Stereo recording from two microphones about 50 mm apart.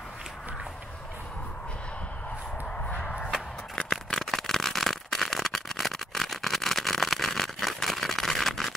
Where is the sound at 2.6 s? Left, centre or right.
Left.